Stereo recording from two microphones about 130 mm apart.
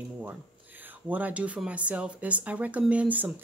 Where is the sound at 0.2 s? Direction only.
15° right (ahead or behind).